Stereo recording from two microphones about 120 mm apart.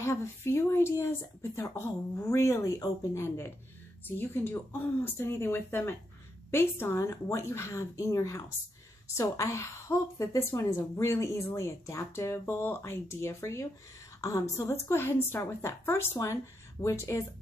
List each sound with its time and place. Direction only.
0.0 s a woman's voice: 25° left (ahead or behind)